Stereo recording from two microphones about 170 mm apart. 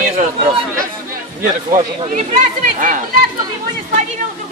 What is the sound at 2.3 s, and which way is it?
Speech, 50° right (ahead or behind).